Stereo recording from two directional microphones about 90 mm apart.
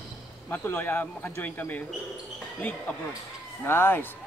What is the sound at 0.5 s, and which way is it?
Speech, 20° left (ahead or behind).